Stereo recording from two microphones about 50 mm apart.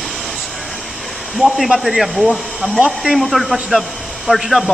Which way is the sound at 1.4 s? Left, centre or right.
Centre.